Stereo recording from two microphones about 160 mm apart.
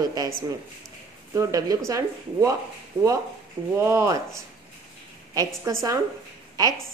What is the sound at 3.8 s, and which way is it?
Speech, 15° right (ahead or behind).